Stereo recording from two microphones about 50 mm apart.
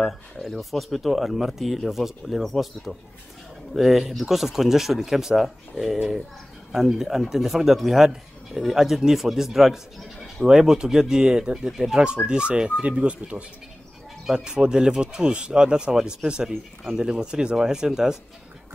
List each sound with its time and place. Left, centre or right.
0.0 s speech: centre